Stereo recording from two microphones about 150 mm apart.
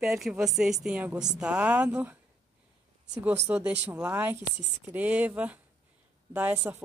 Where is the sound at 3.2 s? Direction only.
10° right (ahead or behind).